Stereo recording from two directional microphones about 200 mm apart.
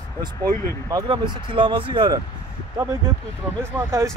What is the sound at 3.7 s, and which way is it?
Speech, 15° right (ahead or behind).